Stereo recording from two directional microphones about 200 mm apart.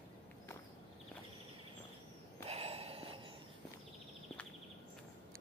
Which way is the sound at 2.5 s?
30° right (ahead or behind).